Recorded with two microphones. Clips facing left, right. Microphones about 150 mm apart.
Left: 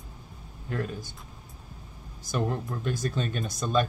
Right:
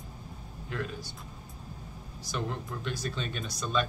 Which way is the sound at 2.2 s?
45° left (ahead or behind).